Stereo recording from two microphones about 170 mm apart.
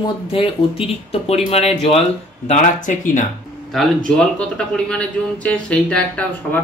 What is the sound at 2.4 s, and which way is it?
Speech, 50° left (ahead or behind).